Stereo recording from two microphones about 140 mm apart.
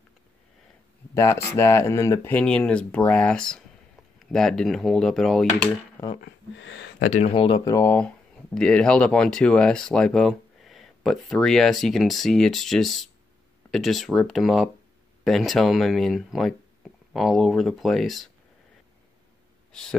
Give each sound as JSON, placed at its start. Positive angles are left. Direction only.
{"t": 1.1, "sound": "speech", "side_deg": 20}
{"t": 2.3, "sound": "speech", "side_deg": 10}
{"t": 7.0, "sound": "speech", "side_deg": 55}
{"t": 7.3, "sound": "speech", "side_deg": 35}
{"t": 7.7, "sound": "speech", "side_deg": 15}
{"t": 19.7, "sound": "speech", "side_deg": 5}